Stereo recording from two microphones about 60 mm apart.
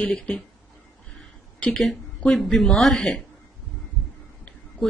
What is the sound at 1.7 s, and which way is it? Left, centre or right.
Speech, centre.